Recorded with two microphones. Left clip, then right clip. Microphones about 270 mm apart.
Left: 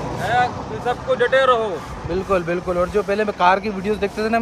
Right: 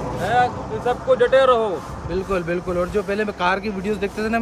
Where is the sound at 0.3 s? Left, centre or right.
Centre.